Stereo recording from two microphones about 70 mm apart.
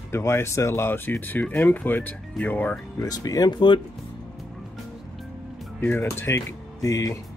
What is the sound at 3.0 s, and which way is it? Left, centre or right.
Speech, left.